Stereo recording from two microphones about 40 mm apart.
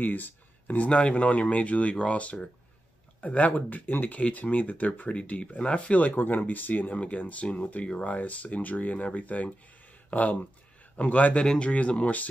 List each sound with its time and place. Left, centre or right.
0.0 s speech: left
1.0 s speech: left
4.2 s speech: left
5.9 s speech: left
7.0 s speech: left
7.4 s speech: left
8.0 s speech: left